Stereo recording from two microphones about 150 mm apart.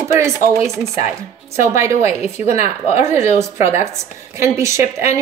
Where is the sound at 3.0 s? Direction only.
20° right (ahead or behind).